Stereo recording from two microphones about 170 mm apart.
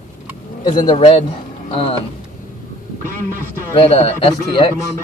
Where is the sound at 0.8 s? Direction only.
35° left (ahead or behind).